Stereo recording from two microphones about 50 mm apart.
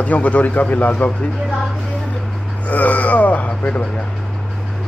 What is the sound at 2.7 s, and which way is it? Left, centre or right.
Speech, left.